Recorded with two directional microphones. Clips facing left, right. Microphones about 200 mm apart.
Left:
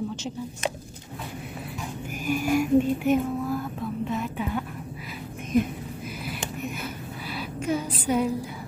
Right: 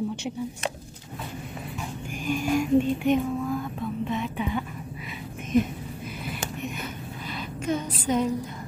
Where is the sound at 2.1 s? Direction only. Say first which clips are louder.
Left 1 dB; 5° left (ahead or behind).